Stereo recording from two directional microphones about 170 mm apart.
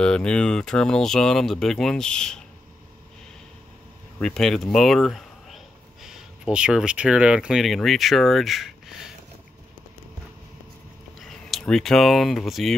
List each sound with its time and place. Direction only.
0.0 s speech: 5° left (ahead or behind)
4.2 s speech: centre (ahead or behind)
11.1 s speech: centre (ahead or behind)